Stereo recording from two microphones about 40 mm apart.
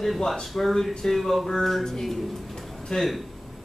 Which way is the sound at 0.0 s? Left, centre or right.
Centre.